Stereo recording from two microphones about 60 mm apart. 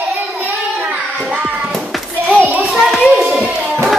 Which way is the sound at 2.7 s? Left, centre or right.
Centre.